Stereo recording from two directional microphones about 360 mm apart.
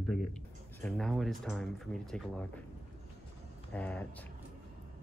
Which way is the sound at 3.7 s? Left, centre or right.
Centre.